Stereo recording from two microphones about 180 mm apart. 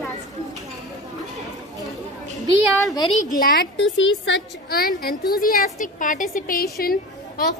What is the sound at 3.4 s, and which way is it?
A woman's voice, 75° left (ahead or behind).